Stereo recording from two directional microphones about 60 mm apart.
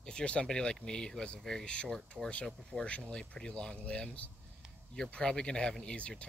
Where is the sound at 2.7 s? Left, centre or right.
Right.